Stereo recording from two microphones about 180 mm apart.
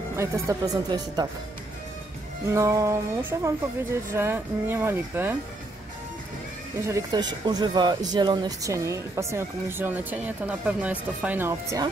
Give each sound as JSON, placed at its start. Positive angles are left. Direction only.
{"t": 0.1, "sound": "speech", "side_deg": -15}
{"t": 2.5, "sound": "speech", "side_deg": -15}
{"t": 6.9, "sound": "speech", "side_deg": -20}